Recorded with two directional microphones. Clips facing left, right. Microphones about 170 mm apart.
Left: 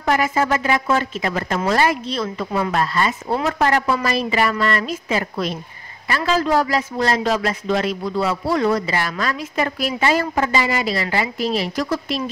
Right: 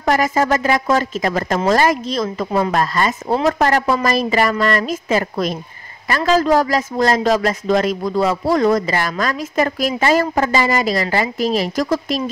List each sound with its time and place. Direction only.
0.0 s a woman's voice: 40° right (ahead or behind)